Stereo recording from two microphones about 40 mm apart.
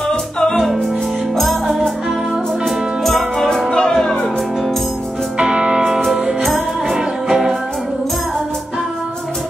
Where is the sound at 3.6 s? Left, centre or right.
Centre.